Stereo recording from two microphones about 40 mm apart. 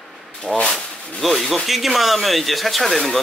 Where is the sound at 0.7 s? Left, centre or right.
Centre.